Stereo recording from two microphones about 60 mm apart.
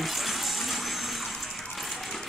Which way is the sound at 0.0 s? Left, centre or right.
Centre.